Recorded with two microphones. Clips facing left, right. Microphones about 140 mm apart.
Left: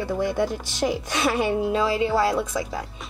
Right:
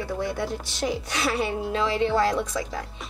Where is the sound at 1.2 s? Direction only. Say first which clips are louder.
Left 5 dB; 20° left (ahead or behind).